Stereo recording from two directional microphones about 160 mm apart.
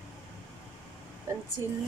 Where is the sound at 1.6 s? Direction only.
20° right (ahead or behind).